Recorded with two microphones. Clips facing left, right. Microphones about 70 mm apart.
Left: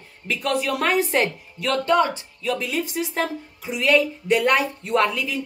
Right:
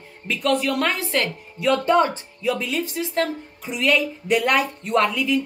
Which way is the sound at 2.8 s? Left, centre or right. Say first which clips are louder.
Right 1 dB; centre.